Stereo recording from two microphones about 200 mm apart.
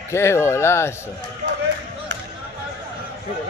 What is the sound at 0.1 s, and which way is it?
Speech, 15° left (ahead or behind).